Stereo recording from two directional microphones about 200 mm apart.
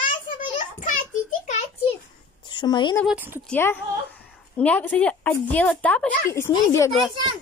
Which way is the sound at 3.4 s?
10° left (ahead or behind).